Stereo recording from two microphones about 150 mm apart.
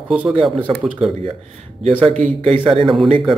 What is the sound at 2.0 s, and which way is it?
Speech, 45° right (ahead or behind).